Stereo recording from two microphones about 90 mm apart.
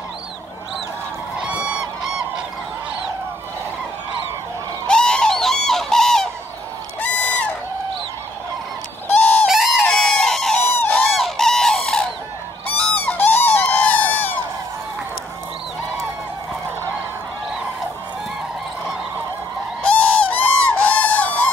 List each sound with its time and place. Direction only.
1.4 s honk: 10° right (ahead or behind)
4.8 s bird: 10° left (ahead or behind)
7.0 s goose: 15° left (ahead or behind)
9.2 s goose: 20° left (ahead or behind)
9.5 s music: 5° right (ahead or behind)
9.8 s a sound: 5° left (ahead or behind)
11.1 s chicken: 5° left (ahead or behind)
12.7 s honk: 15° left (ahead or behind)
19.8 s honk: 15° left (ahead or behind)